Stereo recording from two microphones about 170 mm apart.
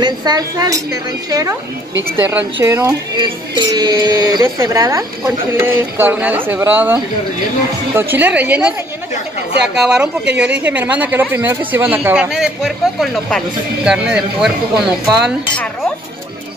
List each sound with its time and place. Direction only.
0.0 s speech: 25° right (ahead or behind); by 8.7 s 10° right (ahead or behind)
9.8 s speech: 5° right (ahead or behind)